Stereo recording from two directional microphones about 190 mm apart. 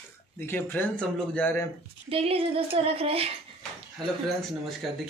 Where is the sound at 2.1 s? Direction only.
30° right (ahead or behind).